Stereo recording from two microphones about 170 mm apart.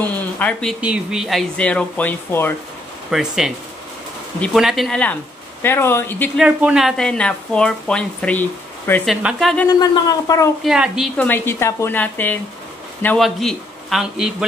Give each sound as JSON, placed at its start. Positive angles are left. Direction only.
{"t": 0.0, "sound": "speech", "side_deg": 10}
{"t": 0.7, "sound": "speech", "side_deg": -5}
{"t": 3.1, "sound": "speech", "side_deg": -5}
{"t": 5.6, "sound": "a woman's voice", "side_deg": 15}
{"t": 6.3, "sound": "speech", "side_deg": -5}
{"t": 9.1, "sound": "speech", "side_deg": 0}
{"t": 9.7, "sound": "speech", "side_deg": 20}
{"t": 10.6, "sound": "speech", "side_deg": 0}
{"t": 11.1, "sound": "a woman's voice", "side_deg": 10}